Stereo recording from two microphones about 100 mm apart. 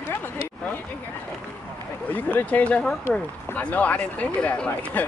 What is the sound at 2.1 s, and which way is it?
Speech, 15° left (ahead or behind).